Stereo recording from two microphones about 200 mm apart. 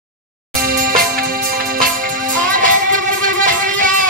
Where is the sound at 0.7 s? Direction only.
45° right (ahead or behind).